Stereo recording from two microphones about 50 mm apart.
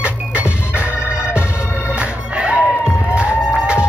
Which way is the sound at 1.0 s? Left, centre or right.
Centre.